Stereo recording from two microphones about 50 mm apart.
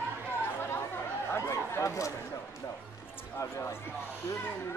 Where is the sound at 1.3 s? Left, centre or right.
Left.